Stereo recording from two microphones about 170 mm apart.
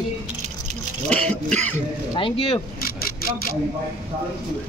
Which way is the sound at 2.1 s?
30° left (ahead or behind).